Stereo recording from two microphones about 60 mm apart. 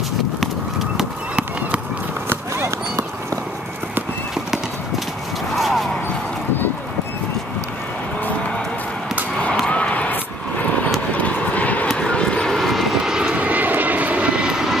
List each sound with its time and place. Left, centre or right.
0.4 s horse: centre
2.2 s run: right
5.6 s clip-clop: centre
9.7 s a sound: left
11.1 s vehicle: left; by 12.9 s centre
13.0 s vehicle: centre